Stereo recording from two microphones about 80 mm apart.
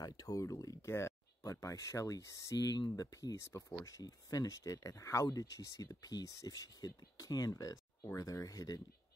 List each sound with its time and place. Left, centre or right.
0.0 s speech: left